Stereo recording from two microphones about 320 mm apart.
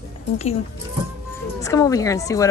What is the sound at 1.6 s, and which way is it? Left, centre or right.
Speech, centre.